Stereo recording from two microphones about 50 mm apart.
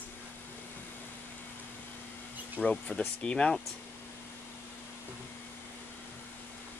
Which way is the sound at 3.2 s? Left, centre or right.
Centre.